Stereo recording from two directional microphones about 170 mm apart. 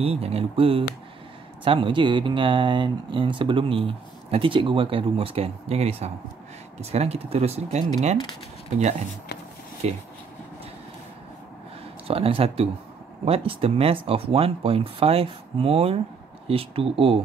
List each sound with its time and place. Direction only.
0.0 s speech: 35° right (ahead or behind)
12.1 s speech: 35° right (ahead or behind)